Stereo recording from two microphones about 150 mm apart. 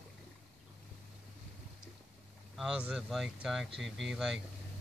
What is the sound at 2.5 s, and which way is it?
Speech, 5° right (ahead or behind).